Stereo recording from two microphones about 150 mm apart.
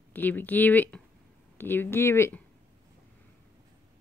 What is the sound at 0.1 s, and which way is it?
Speech, 10° left (ahead or behind).